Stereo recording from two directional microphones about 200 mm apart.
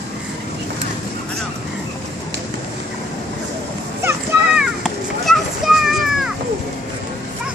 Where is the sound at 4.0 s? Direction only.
10° right (ahead or behind).